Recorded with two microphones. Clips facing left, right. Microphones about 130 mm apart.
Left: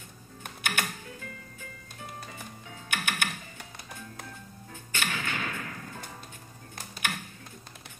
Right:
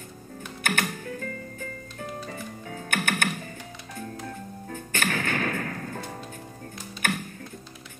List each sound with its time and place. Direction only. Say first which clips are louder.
0.7 s music: right 5 dB; 50° right (ahead or behind)
4.3 s music: right 9 dB; 50° right (ahead or behind)